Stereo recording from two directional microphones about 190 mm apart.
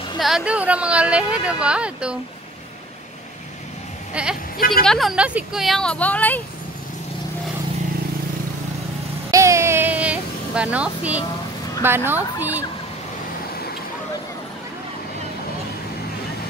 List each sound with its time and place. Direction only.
0.2 s speech: 5° right (ahead or behind)
4.1 s speech: 5° right (ahead or behind)
4.6 s a woman's voice: 50° left (ahead or behind)
4.8 s speech: centre (ahead or behind)
9.3 s a sound: 15° right (ahead or behind)
11.8 s speech: 10° right (ahead or behind)